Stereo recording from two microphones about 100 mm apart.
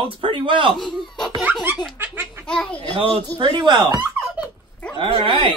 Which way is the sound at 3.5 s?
45° right (ahead or behind).